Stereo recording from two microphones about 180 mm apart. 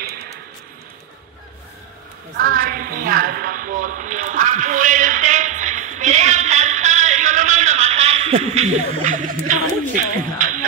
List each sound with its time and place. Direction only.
2.3 s a woman's voice: 50° right (ahead or behind)